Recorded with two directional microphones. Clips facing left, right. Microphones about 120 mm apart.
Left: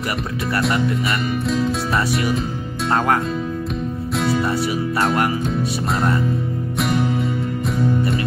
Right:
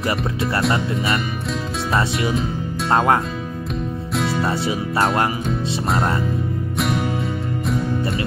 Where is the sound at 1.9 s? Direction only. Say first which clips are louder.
Right 3 dB; 25° right (ahead or behind).